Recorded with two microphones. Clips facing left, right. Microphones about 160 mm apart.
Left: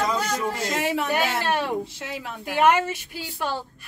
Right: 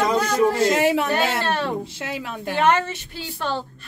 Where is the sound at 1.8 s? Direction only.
90° right.